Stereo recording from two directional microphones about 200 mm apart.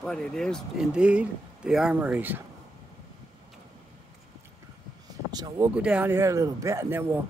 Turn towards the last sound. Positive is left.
turn(degrees=-15)  # may be behind; listen again after turning